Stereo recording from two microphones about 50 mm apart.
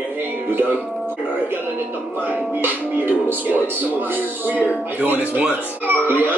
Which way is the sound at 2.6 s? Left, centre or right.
Right.